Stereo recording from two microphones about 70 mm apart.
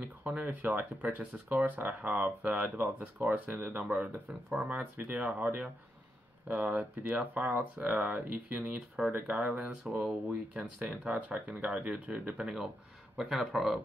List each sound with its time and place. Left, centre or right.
0.0 s speech: right; by 13.7 s centre